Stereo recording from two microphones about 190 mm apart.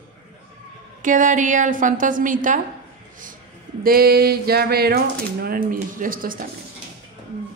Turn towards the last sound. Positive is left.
turn(degrees=-45)  # may be behind; listen again after turning